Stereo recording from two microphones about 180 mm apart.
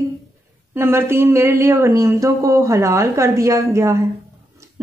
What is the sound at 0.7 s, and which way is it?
A woman's voice, 15° right (ahead or behind).